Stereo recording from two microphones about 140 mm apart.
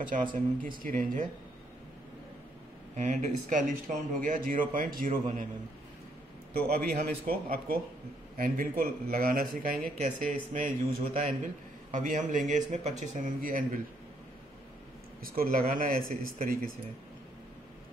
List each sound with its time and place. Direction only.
0.1 s speech: 65° right (ahead or behind)
0.6 s speech: 80° right
3.0 s speech: 60° right (ahead or behind); by 5.4 s 80° right
6.7 s speech: 90° right
9.9 s a man's voice: 60° right (ahead or behind); by 13.7 s 85° right
15.2 s speech: 90° right